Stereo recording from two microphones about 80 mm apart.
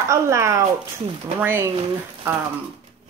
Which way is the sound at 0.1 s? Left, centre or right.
Right.